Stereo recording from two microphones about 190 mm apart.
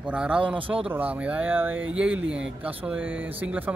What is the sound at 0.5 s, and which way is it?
Speech, 25° right (ahead or behind).